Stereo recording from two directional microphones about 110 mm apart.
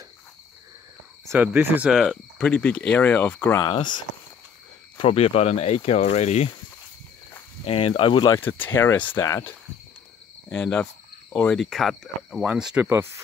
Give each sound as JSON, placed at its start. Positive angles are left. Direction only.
{"t": 1.3, "sound": "speech", "side_deg": -20}
{"t": 1.9, "sound": "speech", "side_deg": -5}
{"t": 2.3, "sound": "speech", "side_deg": 10}
{"t": 3.6, "sound": "speech", "side_deg": 45}
{"t": 4.9, "sound": "speech", "side_deg": 60}
{"t": 7.6, "sound": "speech", "side_deg": 60}
{"t": 8.4, "sound": "speech", "side_deg": 15}
{"t": 10.5, "sound": "speech", "side_deg": 10}